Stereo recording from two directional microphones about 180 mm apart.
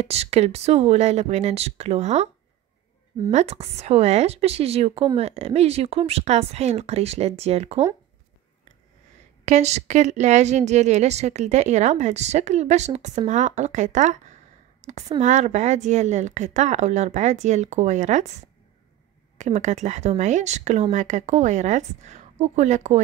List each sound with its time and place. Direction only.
0.0 s speech: 35° right (ahead or behind)
3.3 s speech: 35° right (ahead or behind)
9.4 s speech: 40° right (ahead or behind)